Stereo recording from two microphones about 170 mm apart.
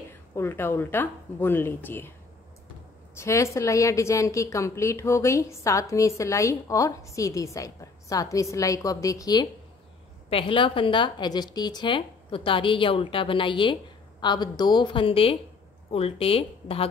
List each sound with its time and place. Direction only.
0.1 s a woman's voice: 15° left (ahead or behind)
3.2 s a woman's voice: 15° left (ahead or behind); by 16.8 s 35° left (ahead or behind)